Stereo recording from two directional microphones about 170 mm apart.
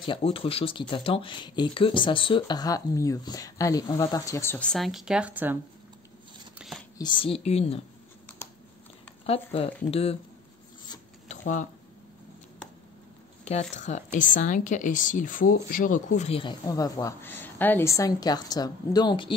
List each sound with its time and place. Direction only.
0.0 s speech: 30° left (ahead or behind); by 5.6 s 10° right (ahead or behind)
7.0 s a woman's voice: 30° left (ahead or behind)
9.2 s a woman's voice: 35° left (ahead or behind)
11.2 s a sound: 45° left (ahead or behind)
13.5 s a woman's voice: 40° left (ahead or behind)
16.6 s speech: 20° left (ahead or behind)